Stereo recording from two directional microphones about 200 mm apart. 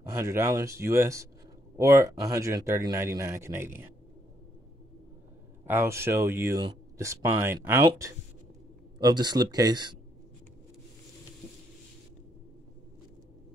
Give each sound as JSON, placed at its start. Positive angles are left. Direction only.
{"t": 0.1, "sound": "speech", "side_deg": -15}
{"t": 5.7, "sound": "speech", "side_deg": -10}